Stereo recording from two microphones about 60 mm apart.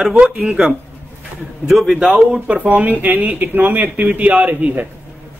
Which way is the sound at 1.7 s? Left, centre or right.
Centre.